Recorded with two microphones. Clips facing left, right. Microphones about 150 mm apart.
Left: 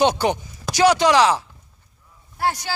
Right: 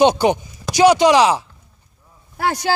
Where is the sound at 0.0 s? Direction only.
15° right (ahead or behind).